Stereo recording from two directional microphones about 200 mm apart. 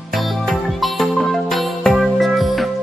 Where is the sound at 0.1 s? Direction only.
Centre (ahead or behind).